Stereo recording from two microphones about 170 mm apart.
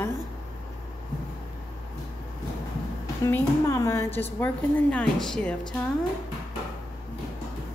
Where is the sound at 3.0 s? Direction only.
15° left (ahead or behind).